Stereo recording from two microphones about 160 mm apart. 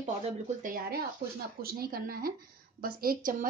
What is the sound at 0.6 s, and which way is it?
Speech, 60° right (ahead or behind).